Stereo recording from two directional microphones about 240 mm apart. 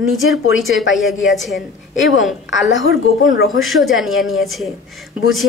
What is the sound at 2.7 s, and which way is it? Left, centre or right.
Speech, left.